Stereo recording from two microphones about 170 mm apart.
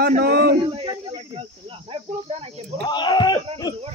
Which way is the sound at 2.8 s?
25° left (ahead or behind).